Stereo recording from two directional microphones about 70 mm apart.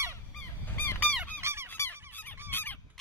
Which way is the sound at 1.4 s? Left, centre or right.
Right.